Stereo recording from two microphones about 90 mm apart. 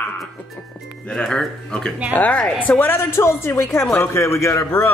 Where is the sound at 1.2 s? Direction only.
10° left (ahead or behind); by 4.9 s 35° left (ahead or behind).